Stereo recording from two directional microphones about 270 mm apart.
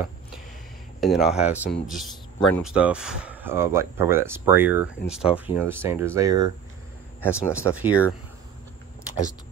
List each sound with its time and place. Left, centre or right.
1.0 s speech: centre
7.2 s speech: centre
7.7 s speech: centre